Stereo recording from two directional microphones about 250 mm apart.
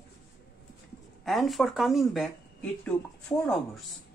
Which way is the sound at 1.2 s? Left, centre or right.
Centre.